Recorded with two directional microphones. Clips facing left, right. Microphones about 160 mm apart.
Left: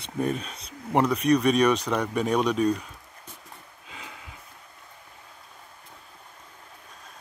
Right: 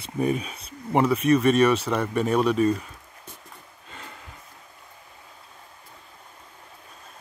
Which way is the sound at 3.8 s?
Centre (ahead or behind).